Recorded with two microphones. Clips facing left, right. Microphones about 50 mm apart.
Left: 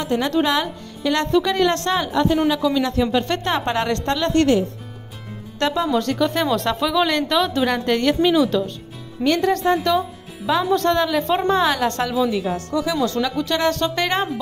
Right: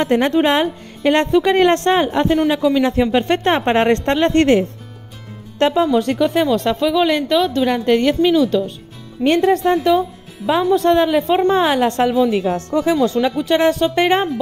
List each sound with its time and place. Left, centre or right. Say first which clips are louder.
0.0 s speech: right 5 dB; right
5.6 s speech: right 5 dB; right
6.4 s a woman's voice: right 4 dB; centre
9.2 s speech: right 4 dB; right
11.5 s speech: right 4 dB; right
12.5 s speech: right 5 dB; right
12.9 s speech: right 5 dB; centre
13.9 s speech: right 6 dB; right